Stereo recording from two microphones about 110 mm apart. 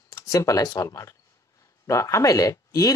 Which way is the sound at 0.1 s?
30° left (ahead or behind).